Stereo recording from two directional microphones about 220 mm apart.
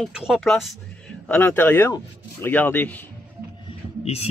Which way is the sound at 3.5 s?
25° left (ahead or behind).